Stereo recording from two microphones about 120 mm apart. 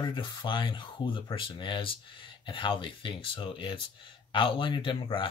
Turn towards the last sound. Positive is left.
turn(degrees=45)  # may be behind; listen again after turning